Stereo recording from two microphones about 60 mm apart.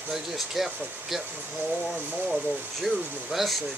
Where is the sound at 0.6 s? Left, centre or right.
Centre.